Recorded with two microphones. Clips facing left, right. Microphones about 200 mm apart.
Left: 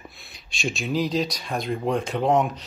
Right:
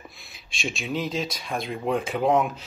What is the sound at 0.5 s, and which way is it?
Speech, centre (ahead or behind).